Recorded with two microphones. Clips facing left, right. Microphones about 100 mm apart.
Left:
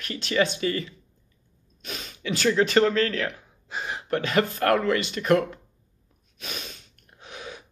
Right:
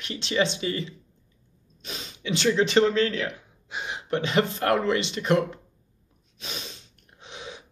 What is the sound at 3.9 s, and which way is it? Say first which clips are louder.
Speech: even; 25° right (ahead or behind).